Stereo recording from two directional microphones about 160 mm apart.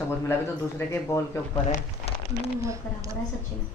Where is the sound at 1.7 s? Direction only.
40° left (ahead or behind).